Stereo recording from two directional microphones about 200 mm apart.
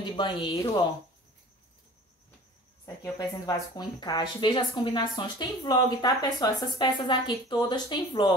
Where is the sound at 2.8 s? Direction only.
15° left (ahead or behind).